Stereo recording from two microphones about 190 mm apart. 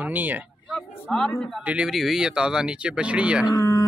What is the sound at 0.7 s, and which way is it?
Speech, 5° left (ahead or behind).